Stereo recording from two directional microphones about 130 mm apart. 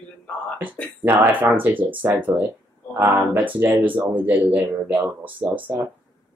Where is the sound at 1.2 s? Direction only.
15° right (ahead or behind).